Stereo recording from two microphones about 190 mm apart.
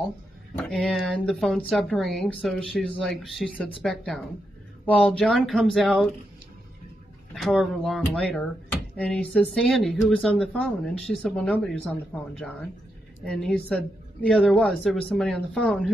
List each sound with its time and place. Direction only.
0.6 s speech: centre (ahead or behind)
7.3 s speech: centre (ahead or behind)